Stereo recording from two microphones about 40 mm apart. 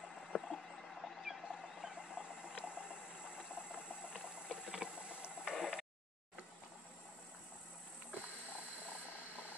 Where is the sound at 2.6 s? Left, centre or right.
Right.